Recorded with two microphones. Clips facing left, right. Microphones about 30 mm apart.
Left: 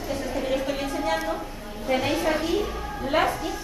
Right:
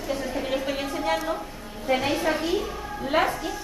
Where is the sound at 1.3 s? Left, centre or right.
Centre.